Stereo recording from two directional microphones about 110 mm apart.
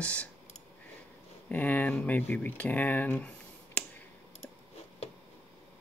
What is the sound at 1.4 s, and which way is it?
Speech, 15° left (ahead or behind).